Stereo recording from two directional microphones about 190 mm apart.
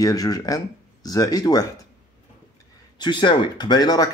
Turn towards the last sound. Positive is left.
turn(degrees=20)  # may be behind; listen again after turning